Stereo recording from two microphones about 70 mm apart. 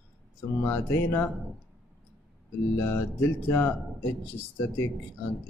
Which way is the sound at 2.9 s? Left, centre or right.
Left.